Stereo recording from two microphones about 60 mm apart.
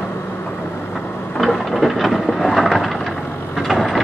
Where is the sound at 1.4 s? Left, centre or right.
Centre.